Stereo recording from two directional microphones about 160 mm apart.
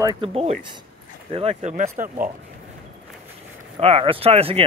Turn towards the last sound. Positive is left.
turn(degrees=-35)  # may be behind; listen again after turning